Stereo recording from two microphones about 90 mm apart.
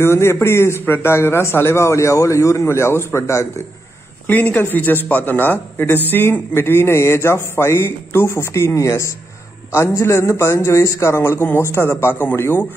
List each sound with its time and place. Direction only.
0.0 s a man's voice: 30° left (ahead or behind)
4.3 s a man's voice: 20° left (ahead or behind)